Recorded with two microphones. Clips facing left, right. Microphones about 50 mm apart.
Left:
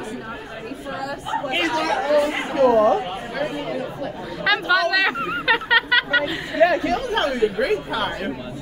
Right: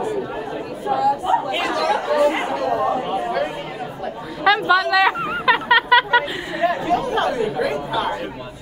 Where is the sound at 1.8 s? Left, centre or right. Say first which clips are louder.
Even; right.